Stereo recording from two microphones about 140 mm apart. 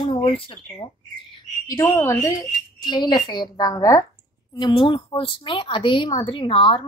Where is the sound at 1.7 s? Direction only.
25° left (ahead or behind).